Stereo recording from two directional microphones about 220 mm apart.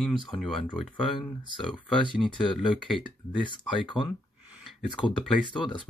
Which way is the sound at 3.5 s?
20° left (ahead or behind).